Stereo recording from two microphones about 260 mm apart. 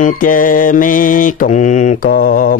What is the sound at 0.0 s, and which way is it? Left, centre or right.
Mantra, left.